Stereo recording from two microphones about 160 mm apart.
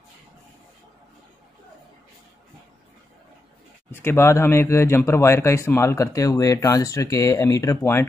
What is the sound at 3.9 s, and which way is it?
Speech, 15° left (ahead or behind).